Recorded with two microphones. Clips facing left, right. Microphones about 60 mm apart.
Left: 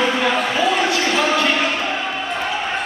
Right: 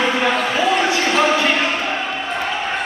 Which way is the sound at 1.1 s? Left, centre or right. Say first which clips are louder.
Right 2 dB; centre.